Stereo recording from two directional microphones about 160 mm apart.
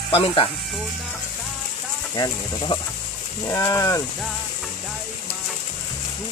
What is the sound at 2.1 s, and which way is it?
Speech, 30° left (ahead or behind).